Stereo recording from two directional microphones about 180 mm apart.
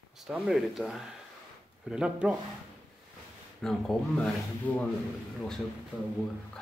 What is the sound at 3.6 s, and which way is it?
Speech, 5° left (ahead or behind).